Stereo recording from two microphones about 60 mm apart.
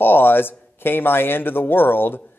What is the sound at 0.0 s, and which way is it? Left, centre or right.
Speech, left.